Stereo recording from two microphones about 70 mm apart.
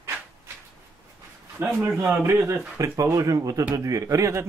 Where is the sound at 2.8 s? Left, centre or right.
Right.